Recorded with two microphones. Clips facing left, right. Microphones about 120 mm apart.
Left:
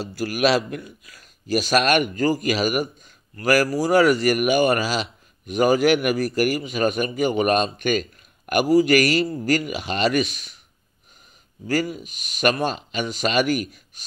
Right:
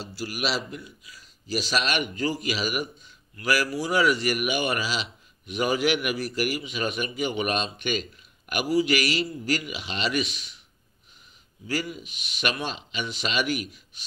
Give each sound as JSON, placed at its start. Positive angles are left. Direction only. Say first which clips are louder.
{"t": 0.0, "sound": "speech", "louder": "left 9 dB", "side_deg": 55}
{"t": 11.6, "sound": "speech", "louder": "left 7 dB", "side_deg": 45}